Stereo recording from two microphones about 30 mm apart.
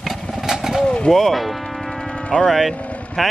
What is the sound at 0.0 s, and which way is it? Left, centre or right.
Vehicle, centre.